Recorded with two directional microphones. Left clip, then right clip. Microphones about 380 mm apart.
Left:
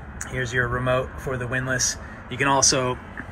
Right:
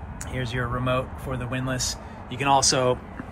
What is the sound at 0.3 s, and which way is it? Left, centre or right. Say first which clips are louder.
Speech: left 5 dB; centre.